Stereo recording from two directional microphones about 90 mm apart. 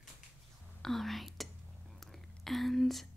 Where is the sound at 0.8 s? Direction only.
Centre (ahead or behind).